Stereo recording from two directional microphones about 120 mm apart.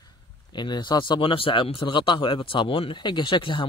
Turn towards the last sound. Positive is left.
turn(degrees=45)  # may be behind; listen again after turning